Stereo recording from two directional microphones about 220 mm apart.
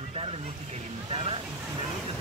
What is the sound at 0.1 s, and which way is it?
Vehicle, 25° right (ahead or behind).